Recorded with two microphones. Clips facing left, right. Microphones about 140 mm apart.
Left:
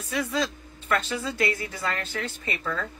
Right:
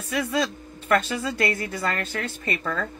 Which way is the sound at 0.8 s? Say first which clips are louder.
Right 4 dB; 60° right (ahead or behind).